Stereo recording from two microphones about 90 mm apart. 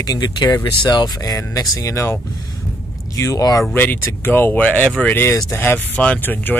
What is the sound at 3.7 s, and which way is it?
Speech, 20° left (ahead or behind).